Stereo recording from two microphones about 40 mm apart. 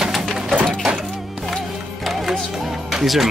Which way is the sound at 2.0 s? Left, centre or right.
Centre.